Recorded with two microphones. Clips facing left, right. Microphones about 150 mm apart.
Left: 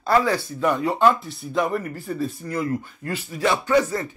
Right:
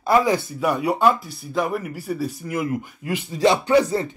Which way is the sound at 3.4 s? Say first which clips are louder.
Right 4 dB; 30° right (ahead or behind).